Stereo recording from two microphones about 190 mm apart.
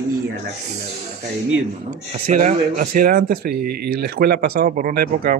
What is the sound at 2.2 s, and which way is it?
Speech, 40° right (ahead or behind).